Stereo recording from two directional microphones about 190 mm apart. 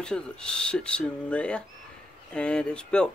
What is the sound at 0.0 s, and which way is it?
Speech, 5° left (ahead or behind).